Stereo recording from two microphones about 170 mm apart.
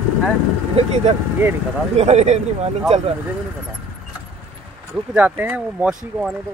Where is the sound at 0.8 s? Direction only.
40° right (ahead or behind).